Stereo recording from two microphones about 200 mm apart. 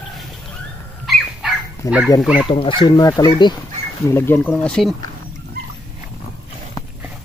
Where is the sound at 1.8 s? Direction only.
15° left (ahead or behind).